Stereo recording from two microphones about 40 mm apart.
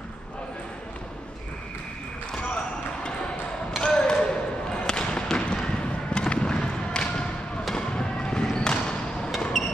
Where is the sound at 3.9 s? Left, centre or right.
Left.